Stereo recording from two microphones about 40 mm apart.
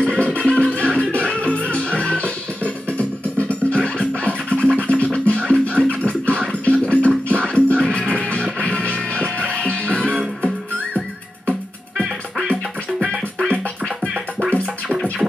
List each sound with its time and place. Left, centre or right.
0.0 s music: left
14.0 s music: centre